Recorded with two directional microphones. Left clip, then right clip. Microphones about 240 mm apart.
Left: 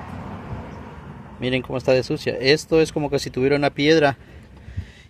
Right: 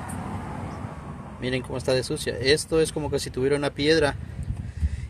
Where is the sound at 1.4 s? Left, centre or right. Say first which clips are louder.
Left 6 dB; left.